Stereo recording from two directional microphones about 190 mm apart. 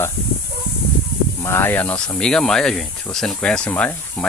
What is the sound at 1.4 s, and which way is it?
Speech, 10° left (ahead or behind).